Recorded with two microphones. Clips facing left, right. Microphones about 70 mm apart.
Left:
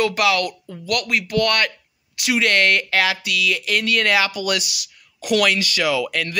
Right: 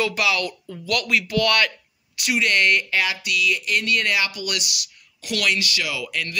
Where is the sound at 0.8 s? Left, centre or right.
Left.